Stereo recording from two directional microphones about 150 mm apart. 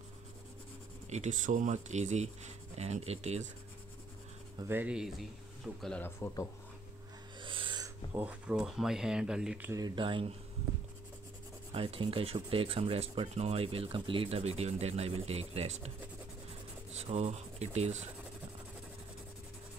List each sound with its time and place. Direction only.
1.1 s speech: 55° right (ahead or behind)
4.6 s speech: 10° right (ahead or behind); by 6.0 s 5° left (ahead or behind)
6.0 s speech: 15° left (ahead or behind)
7.3 s owl: 35° right (ahead or behind)
8.1 s speech: 10° right (ahead or behind)
9.7 s rub: 25° right (ahead or behind)
11.7 s rub: 40° right (ahead or behind)
16.9 s speech: 50° right (ahead or behind)